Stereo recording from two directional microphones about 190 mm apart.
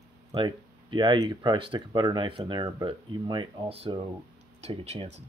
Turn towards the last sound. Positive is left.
turn(degrees=-35)  # may be behind; listen again after turning